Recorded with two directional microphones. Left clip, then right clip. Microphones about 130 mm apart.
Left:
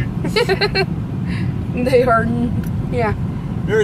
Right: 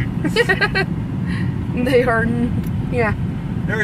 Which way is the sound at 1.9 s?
25° right (ahead or behind).